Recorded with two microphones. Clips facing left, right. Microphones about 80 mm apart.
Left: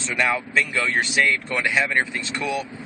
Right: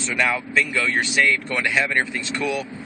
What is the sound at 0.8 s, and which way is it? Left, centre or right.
Speech, centre.